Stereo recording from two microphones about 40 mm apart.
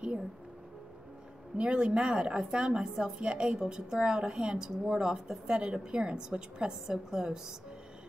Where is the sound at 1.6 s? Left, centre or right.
Right.